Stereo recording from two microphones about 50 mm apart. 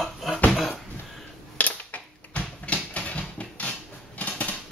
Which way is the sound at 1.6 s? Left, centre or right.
Left.